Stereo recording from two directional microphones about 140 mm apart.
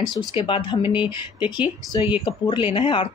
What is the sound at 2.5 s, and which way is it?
Speech, 35° left (ahead or behind).